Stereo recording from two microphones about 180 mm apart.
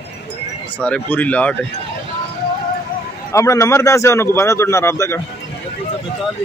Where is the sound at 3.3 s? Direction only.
15° left (ahead or behind).